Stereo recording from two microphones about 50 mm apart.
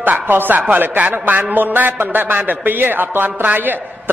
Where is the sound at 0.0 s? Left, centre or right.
Right.